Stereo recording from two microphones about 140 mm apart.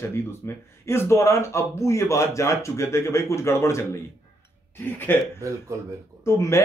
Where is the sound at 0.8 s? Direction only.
20° left (ahead or behind).